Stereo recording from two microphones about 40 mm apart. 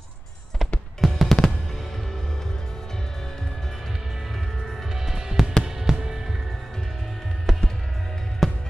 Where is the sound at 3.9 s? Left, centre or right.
Centre.